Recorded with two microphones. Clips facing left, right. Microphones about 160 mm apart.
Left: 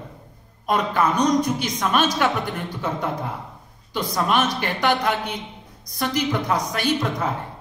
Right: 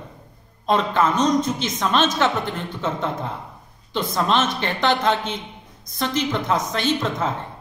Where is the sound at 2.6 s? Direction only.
25° right (ahead or behind).